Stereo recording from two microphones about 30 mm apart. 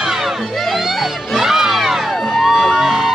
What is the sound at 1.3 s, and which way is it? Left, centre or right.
Crowd, centre.